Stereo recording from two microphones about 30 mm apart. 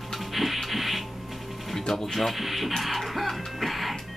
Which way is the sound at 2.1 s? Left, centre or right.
Centre.